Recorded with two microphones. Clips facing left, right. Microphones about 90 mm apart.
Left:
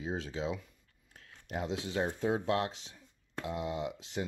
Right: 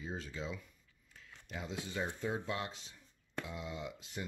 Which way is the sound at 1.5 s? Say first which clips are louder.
Left 7 dB; 65° left (ahead or behind).